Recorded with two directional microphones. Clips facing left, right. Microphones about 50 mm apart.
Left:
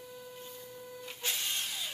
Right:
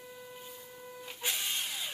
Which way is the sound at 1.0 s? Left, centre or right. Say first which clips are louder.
Right 1 dB; centre.